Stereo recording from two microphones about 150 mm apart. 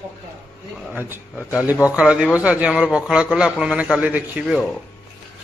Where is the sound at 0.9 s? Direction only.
10° right (ahead or behind).